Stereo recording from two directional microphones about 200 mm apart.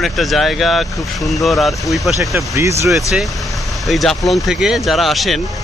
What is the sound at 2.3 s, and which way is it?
Speech, 15° right (ahead or behind).